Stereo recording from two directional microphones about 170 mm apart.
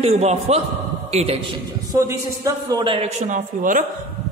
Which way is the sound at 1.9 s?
20° right (ahead or behind).